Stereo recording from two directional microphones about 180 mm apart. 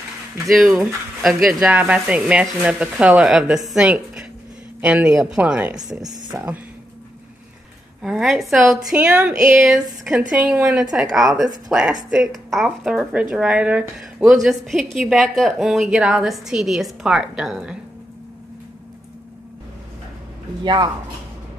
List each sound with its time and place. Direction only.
0.5 s speech: centre (ahead or behind)
6.0 s speech: 20° right (ahead or behind)
8.0 s speech: centre (ahead or behind)
20.6 s speech: 25° right (ahead or behind)